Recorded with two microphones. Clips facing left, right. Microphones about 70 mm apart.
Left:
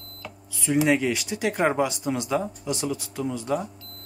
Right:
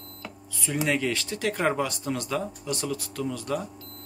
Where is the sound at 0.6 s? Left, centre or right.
Centre.